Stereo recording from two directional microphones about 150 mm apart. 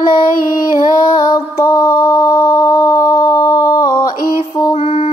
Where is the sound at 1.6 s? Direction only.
20° left (ahead or behind).